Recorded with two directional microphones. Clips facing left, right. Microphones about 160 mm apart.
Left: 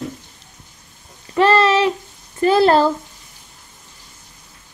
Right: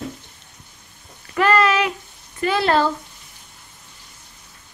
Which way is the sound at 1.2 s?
30° left (ahead or behind).